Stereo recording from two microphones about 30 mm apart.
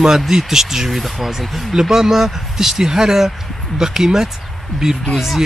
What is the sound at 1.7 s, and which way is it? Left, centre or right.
Speech, centre.